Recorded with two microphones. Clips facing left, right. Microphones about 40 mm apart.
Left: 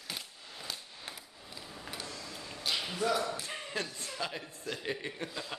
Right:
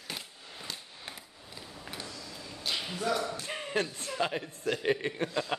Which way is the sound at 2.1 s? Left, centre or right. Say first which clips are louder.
Even; left.